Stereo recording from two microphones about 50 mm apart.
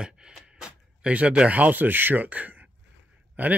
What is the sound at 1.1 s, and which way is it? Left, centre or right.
Speech, right.